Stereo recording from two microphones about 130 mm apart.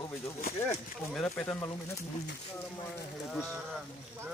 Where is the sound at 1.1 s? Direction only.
Centre (ahead or behind).